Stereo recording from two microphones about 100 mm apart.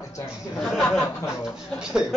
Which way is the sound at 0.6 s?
10° left (ahead or behind).